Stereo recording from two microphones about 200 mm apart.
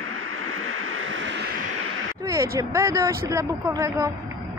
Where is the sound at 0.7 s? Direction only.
90° right; by 1.3 s 70° right (ahead or behind).